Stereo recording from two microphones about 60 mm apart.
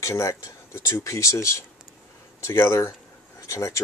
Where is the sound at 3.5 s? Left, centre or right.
Left.